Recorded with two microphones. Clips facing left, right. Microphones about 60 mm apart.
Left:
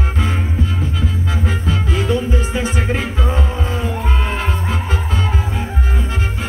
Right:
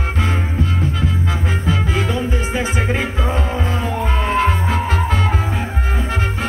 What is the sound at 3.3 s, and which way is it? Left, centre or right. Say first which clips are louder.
Music: right 1 dB; right.